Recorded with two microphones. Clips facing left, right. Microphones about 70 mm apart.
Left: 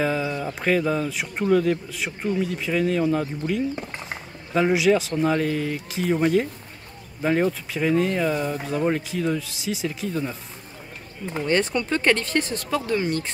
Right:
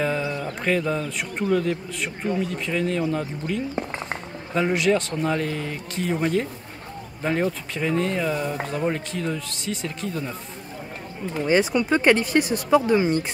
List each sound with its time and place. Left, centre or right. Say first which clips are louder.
0.0 s a sound: left 1 dB; centre
0.6 s speech: left 2 dB; centre
11.4 s speech: right 3 dB; centre